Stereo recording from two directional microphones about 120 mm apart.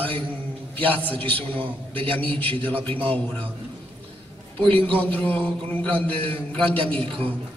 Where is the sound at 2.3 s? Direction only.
50° right (ahead or behind).